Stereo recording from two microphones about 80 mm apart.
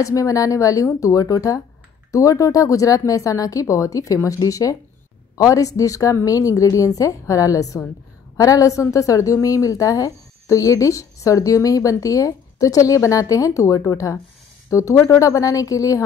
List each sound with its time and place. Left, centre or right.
0.0 s a woman's voice: left